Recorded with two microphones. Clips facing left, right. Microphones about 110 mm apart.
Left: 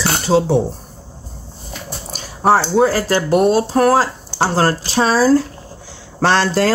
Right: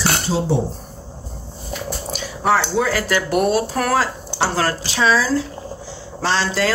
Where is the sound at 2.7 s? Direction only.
35° left (ahead or behind).